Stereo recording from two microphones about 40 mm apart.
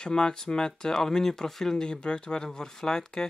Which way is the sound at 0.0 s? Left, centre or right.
Centre.